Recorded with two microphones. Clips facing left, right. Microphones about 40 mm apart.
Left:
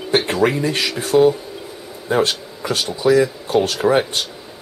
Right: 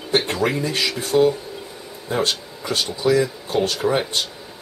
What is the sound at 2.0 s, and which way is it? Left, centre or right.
Speech, centre.